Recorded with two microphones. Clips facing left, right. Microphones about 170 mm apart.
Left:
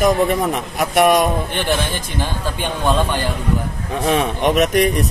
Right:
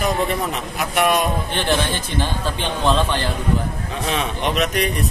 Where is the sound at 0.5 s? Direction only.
50° left (ahead or behind).